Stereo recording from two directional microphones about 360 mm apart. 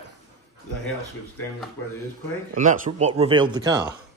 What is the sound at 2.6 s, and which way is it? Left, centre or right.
Speech, right.